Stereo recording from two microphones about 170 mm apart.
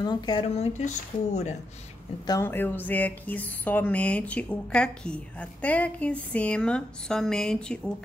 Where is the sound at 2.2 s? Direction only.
20° left (ahead or behind).